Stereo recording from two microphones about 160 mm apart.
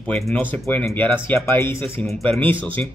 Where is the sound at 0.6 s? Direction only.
15° left (ahead or behind).